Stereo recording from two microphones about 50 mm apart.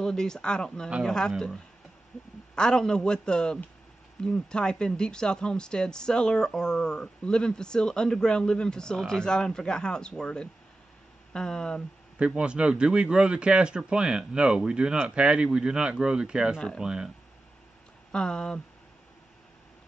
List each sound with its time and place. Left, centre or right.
0.0 s speech: centre
2.5 s speech: centre
12.4 s speech: right
18.1 s speech: centre